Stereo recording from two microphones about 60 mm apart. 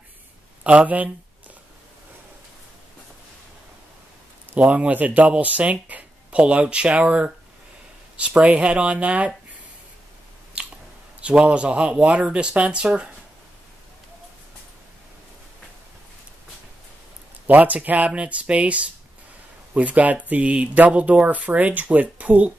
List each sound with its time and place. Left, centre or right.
0.7 s speech: right
4.6 s speech: right
10.6 s biting: right
11.1 s speech: centre
17.5 s speech: right